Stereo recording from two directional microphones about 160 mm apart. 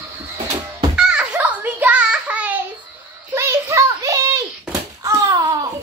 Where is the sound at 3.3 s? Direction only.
15° right (ahead or behind).